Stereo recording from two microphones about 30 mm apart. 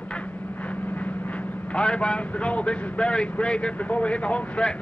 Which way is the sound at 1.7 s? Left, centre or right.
Left.